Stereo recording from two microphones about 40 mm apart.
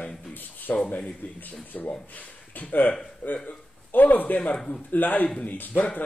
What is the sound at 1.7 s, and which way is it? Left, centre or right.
Speech, left.